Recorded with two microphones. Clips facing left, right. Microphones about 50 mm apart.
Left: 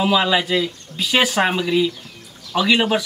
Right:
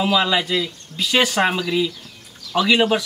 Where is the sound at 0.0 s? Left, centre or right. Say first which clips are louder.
Left 1 dB; centre.